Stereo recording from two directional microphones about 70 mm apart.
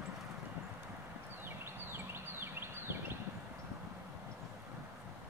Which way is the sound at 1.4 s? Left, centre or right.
Right.